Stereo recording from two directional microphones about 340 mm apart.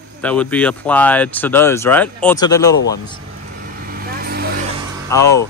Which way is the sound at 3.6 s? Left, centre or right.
Right.